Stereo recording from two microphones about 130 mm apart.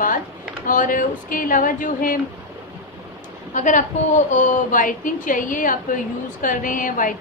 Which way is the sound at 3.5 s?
75° left (ahead or behind).